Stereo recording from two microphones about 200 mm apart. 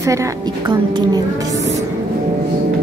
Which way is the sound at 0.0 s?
15° right (ahead or behind).